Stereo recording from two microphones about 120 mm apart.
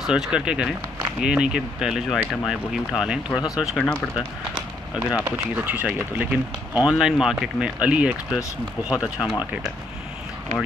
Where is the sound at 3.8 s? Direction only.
10° left (ahead or behind).